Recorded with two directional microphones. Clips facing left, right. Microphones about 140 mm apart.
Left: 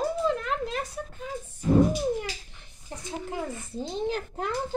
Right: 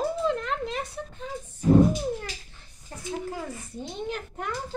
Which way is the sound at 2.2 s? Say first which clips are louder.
Left 3 dB; 20° left (ahead or behind).